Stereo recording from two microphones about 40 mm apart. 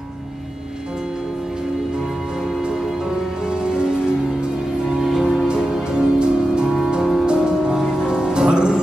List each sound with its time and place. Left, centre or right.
3.4 s music: right
4.9 s music: centre
5.5 s music: centre